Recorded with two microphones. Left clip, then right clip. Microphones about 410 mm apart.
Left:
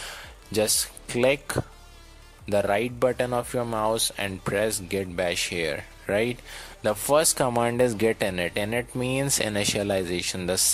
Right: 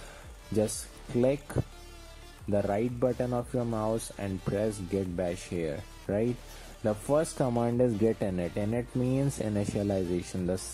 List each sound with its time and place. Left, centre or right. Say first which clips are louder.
1.1 s speech: left 5 dB; left